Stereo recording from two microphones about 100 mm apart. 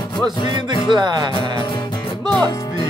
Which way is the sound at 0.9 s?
45° right (ahead or behind).